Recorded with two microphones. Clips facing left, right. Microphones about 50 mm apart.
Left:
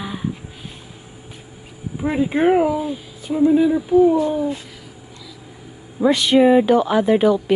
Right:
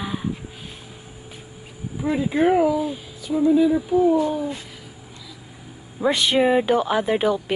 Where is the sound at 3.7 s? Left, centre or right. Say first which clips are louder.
Left 4 dB; centre.